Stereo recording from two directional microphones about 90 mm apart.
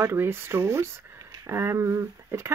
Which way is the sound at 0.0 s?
25° right (ahead or behind).